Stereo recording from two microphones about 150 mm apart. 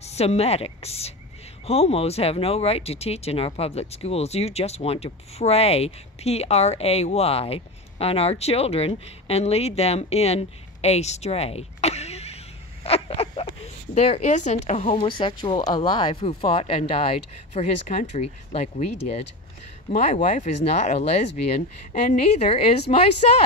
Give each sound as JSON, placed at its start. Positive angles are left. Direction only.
{"t": 0.0, "sound": "a woman's voice", "side_deg": 45}